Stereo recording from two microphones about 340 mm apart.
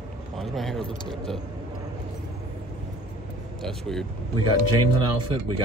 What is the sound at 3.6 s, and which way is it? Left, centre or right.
Speech, centre.